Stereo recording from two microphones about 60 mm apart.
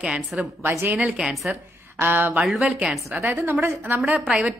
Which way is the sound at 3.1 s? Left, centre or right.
Right.